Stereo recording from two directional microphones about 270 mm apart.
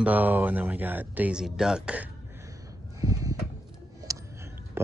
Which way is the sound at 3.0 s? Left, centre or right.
Centre.